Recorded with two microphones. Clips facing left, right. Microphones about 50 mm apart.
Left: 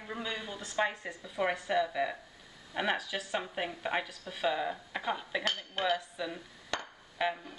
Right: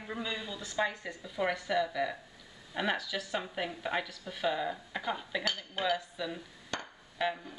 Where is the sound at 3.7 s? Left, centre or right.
Left.